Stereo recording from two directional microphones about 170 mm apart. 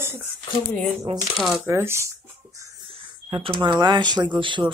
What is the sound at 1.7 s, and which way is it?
Speech, 15° right (ahead or behind).